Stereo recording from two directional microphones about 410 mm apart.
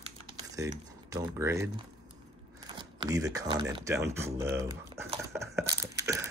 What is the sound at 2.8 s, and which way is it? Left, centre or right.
Speech, centre.